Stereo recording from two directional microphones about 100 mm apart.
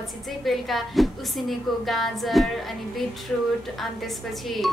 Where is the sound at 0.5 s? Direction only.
Centre (ahead or behind).